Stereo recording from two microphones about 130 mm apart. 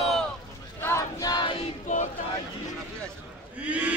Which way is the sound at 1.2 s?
40° left (ahead or behind).